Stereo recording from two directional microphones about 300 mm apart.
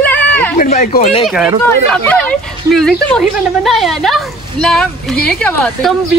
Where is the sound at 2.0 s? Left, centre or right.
Centre.